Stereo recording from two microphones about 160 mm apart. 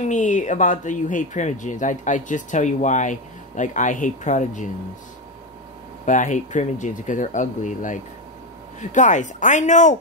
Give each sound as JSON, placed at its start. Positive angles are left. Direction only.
{"t": 0.1, "sound": "speech", "side_deg": 50}
{"t": 6.0, "sound": "speech", "side_deg": 50}